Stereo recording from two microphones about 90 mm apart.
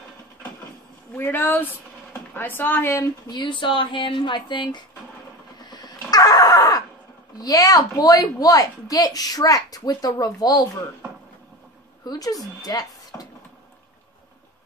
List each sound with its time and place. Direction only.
1.1 s speech: 25° left (ahead or behind)
3.3 s speech: 60° left (ahead or behind)
5.6 s a sound: 50° left (ahead or behind)
7.3 s a woman's voice: 45° left (ahead or behind)
12.0 s speech: 45° left (ahead or behind)
12.6 s a sound: 45° left (ahead or behind)